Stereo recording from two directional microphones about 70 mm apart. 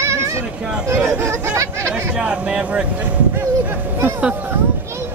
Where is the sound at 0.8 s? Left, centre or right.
Right.